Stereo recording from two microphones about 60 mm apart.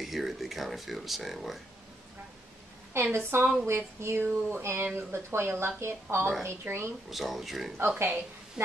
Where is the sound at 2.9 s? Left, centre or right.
Right.